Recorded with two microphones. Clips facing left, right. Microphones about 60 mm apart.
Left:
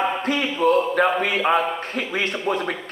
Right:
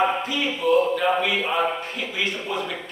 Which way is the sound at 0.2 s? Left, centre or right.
Left.